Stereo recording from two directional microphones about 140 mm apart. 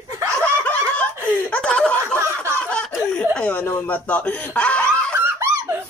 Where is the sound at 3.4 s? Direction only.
10° left (ahead or behind).